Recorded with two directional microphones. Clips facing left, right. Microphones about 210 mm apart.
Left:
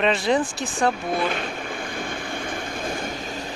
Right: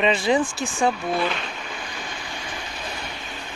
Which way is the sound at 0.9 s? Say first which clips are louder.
Even; 50° left (ahead or behind).